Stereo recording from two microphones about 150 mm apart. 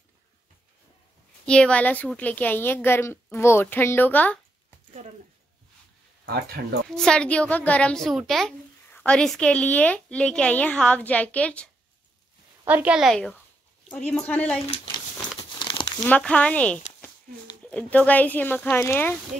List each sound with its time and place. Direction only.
1.4 s a woman's voice: 5° left (ahead or behind)
6.2 s speech: 90° right
6.9 s a woman's voice: 5° left (ahead or behind)
12.6 s a woman's voice: 10° right (ahead or behind); by 14.6 s 10° left (ahead or behind)
15.6 s crumpling: 30° left (ahead or behind)
16.1 s a woman's voice: 5° left (ahead or behind)